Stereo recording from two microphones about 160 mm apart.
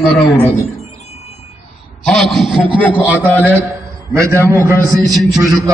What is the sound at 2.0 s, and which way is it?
Speech, centre (ahead or behind).